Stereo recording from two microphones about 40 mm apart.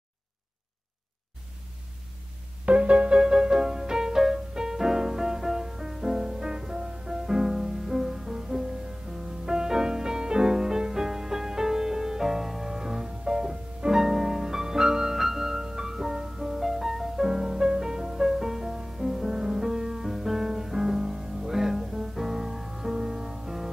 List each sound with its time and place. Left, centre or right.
2.6 s music: right
3.2 s music: centre